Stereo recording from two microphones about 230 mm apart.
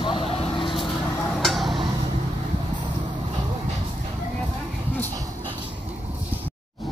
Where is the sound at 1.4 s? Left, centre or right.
Centre.